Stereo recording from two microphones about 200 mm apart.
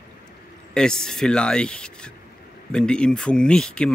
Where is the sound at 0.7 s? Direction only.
5° left (ahead or behind).